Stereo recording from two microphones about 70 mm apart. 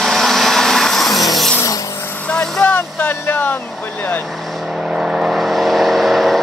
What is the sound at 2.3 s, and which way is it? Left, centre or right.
Vehicle, centre.